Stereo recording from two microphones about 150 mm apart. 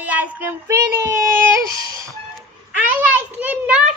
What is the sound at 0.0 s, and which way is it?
Child singing, 10° right (ahead or behind).